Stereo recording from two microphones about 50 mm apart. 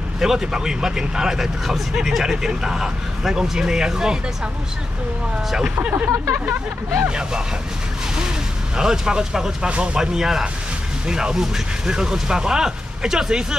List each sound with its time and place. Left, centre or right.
0.2 s speech: centre
5.8 s speech: right
7.1 s speech: centre
8.7 s speech: centre